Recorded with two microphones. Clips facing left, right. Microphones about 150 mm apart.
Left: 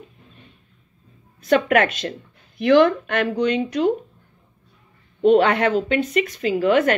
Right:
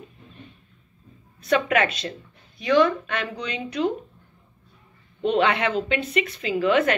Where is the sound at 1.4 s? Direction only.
50° left (ahead or behind).